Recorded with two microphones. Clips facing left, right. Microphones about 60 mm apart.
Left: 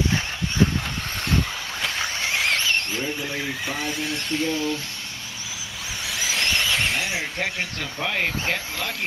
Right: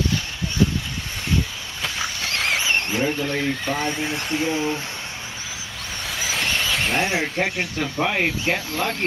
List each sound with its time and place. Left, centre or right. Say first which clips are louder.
2.6 s a sound: right 3 dB; right
3.2 s speech: right 5 dB; centre; by 4.7 s right
6.0 s vehicle: even; centre
7.0 s speech: right 5 dB; right
7.3 s speech: right 4 dB; centre